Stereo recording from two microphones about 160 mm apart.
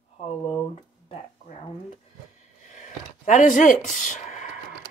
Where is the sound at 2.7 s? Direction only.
50° left (ahead or behind).